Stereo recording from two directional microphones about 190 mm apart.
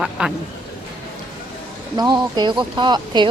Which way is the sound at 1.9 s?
25° right (ahead or behind).